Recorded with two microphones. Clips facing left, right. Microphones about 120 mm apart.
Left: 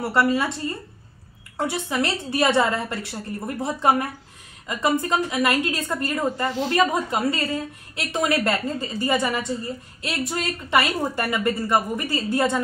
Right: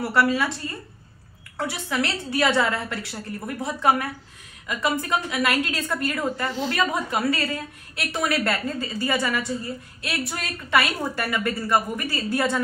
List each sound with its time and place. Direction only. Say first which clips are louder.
0.0 s a woman's voice: left 1 dB; 25° left (ahead or behind)
1.6 s a woman's voice: left 2 dB; 20° left (ahead or behind)